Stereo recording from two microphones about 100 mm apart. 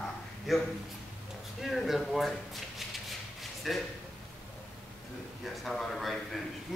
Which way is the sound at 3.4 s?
Centre (ahead or behind).